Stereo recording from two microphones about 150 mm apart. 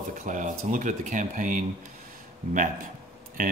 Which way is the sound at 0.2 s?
60° right (ahead or behind).